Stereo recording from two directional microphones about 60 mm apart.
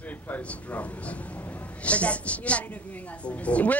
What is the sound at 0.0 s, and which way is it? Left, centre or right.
A man's voice, left.